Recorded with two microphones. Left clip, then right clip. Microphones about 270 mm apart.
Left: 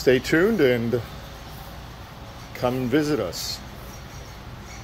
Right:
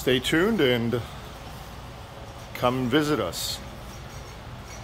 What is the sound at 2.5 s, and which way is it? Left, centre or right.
Speech, centre.